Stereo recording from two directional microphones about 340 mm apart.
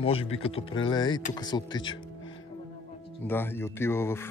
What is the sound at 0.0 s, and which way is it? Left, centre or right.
Speech, centre.